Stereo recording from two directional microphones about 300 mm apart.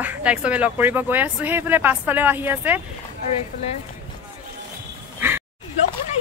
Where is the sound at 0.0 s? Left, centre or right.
Centre.